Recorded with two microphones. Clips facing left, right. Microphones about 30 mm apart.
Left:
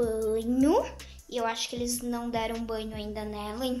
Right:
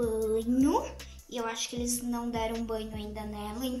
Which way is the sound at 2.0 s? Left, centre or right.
Left.